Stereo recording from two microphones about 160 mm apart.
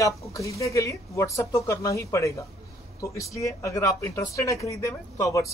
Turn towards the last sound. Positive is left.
turn(degrees=20)  # may be behind; listen again after turning